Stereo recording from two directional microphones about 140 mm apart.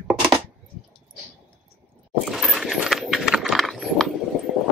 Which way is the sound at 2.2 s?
Centre (ahead or behind).